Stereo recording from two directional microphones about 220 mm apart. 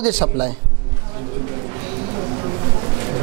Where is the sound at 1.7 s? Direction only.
25° right (ahead or behind).